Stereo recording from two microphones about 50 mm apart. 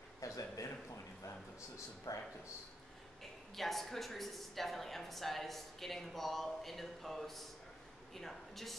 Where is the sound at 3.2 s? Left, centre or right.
Centre.